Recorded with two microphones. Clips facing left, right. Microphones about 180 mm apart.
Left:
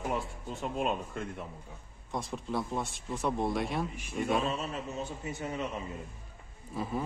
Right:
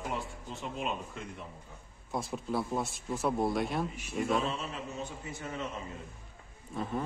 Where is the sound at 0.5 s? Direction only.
45° left (ahead or behind).